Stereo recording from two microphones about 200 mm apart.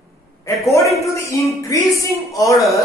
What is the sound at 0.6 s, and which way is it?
A man's voice, 15° left (ahead or behind).